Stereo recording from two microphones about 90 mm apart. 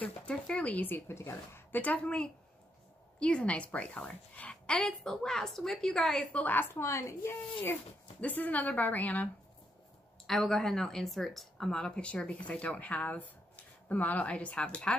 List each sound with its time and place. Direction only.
0.0 s a woman's voice: 15° left (ahead or behind)
6.3 s speech: 20° left (ahead or behind)
6.8 s speech: 30° left (ahead or behind)
10.2 s a woman's voice: 5° left (ahead or behind)